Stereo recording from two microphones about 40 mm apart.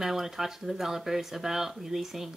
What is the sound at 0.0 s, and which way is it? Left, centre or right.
Speech, centre.